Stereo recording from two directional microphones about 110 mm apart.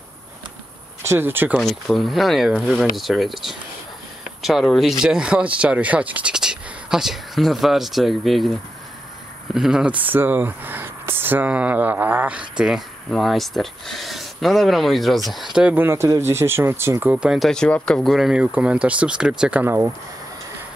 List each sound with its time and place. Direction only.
1.0 s speech: 20° right (ahead or behind)
1.9 s speech: centre (ahead or behind); by 17.1 s 25° right (ahead or behind)
17.1 s speech: 10° right (ahead or behind)
17.4 s speech: 5° left (ahead or behind)
19.6 s speech: 20° right (ahead or behind)